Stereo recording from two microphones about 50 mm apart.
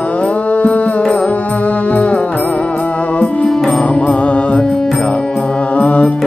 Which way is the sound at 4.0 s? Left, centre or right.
Left.